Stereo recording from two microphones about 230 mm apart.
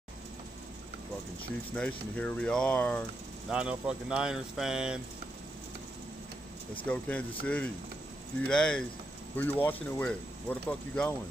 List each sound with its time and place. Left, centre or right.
1.7 s speech: centre
6.9 s speech: centre